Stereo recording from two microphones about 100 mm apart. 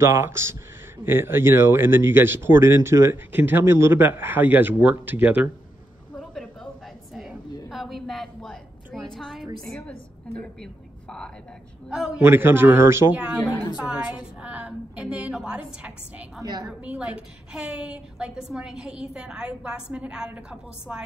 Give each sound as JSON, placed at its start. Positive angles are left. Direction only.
{"t": 0.0, "sound": "speech", "side_deg": -25}
{"t": 6.1, "sound": "a sound", "side_deg": 5}
{"t": 7.7, "sound": "a sound", "side_deg": 0}
{"t": 9.7, "sound": "a woman's voice", "side_deg": 10}
{"t": 11.9, "sound": "a woman's voice", "side_deg": -5}
{"t": 12.2, "sound": "speech", "side_deg": -20}
{"t": 13.7, "sound": "a woman's voice", "side_deg": -10}